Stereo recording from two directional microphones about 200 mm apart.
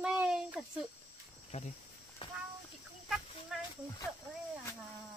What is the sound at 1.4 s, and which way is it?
Speech, 30° left (ahead or behind).